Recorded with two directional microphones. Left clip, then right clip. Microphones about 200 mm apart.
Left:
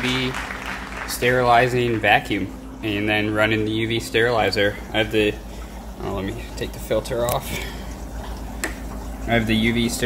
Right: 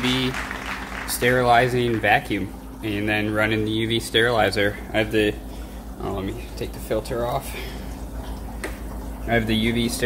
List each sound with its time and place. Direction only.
0.0 s applause: 15° right (ahead or behind)
1.0 s speech: 15° right (ahead or behind)
9.3 s speech: 5° right (ahead or behind)